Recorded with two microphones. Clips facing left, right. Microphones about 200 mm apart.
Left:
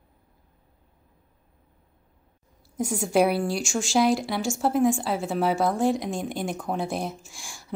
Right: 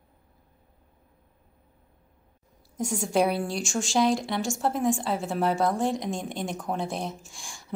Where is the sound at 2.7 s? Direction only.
5° left (ahead or behind).